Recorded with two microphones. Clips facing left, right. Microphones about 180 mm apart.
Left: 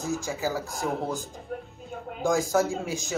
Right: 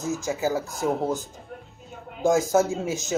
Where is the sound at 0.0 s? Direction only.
20° right (ahead or behind).